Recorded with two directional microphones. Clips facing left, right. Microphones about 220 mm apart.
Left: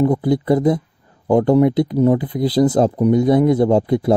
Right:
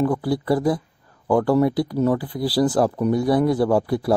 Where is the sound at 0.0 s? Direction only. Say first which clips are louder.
Left 5 dB; 20° left (ahead or behind).